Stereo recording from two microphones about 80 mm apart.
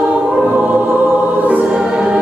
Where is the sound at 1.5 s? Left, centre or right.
Centre.